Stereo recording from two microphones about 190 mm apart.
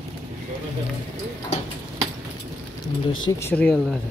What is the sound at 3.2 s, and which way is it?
Speech, 15° left (ahead or behind).